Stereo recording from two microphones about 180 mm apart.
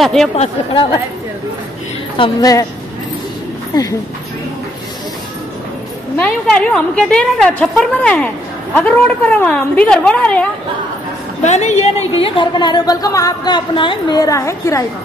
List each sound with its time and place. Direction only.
0.0 s a woman's voice: centre (ahead or behind)
2.1 s a woman's voice: 25° left (ahead or behind)
3.7 s a woman's voice: 25° left (ahead or behind)
6.1 s a woman's voice: 5° left (ahead or behind)
11.4 s a woman's voice: 40° left (ahead or behind); by 14.9 s 15° left (ahead or behind)